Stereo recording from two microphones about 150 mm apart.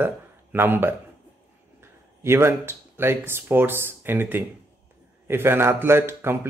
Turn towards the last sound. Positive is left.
turn(degrees=-15)  # may be behind; listen again after turning